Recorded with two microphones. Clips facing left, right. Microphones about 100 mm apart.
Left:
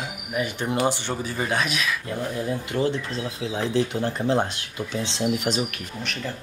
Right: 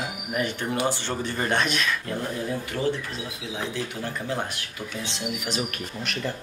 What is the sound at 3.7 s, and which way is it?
Speech, 30° left (ahead or behind).